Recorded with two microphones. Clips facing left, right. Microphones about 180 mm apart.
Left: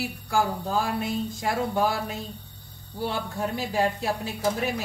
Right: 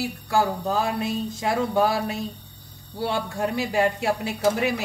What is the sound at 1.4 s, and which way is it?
Speech, 80° right.